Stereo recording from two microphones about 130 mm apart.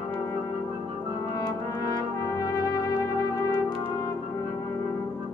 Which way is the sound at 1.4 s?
30° left (ahead or behind).